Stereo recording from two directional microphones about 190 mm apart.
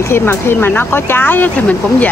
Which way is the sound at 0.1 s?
10° left (ahead or behind).